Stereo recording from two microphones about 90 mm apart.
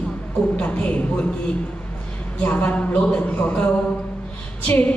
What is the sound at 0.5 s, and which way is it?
Speech, 15° left (ahead or behind).